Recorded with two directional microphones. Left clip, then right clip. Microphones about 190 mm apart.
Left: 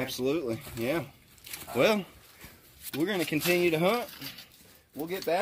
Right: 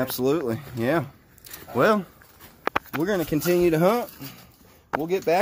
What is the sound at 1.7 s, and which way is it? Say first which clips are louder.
Speech: right 5 dB; 20° right (ahead or behind).